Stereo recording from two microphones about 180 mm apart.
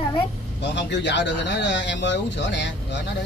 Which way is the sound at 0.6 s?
75° left (ahead or behind).